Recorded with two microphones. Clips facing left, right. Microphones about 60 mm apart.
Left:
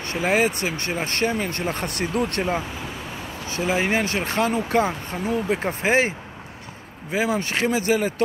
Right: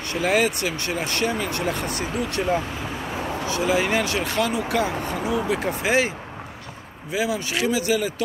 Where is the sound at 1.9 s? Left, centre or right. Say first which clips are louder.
Left 2 dB; left.